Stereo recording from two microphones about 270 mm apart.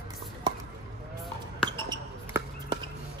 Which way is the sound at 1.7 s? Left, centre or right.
Centre.